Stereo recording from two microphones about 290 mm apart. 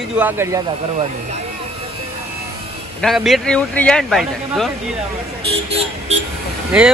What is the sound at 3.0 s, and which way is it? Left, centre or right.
Speech, centre.